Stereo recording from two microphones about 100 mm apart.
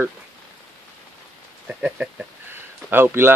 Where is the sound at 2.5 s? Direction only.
20° right (ahead or behind).